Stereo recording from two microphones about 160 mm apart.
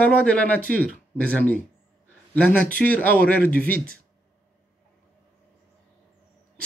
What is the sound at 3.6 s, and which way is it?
Speech, 65° right (ahead or behind).